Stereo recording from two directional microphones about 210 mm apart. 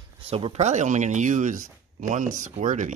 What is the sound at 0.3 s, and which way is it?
Speech, 30° right (ahead or behind).